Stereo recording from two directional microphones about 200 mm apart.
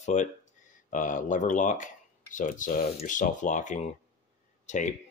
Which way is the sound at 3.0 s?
40° left (ahead or behind).